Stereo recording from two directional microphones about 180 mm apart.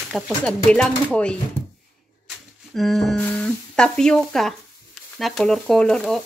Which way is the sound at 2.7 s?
Centre (ahead or behind).